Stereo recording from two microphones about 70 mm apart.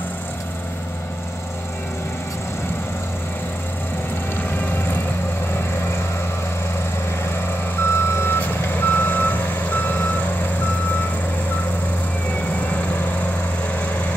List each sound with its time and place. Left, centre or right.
4.5 s vehicle: left
7.8 s reversing beeps: left
12.5 s train: left